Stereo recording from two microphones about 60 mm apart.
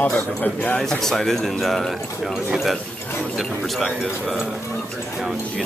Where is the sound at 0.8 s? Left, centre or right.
Centre.